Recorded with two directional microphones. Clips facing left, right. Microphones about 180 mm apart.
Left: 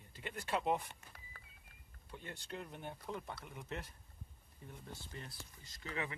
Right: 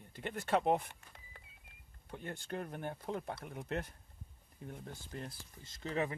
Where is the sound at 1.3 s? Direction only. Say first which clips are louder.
Right 2 dB; 25° right (ahead or behind).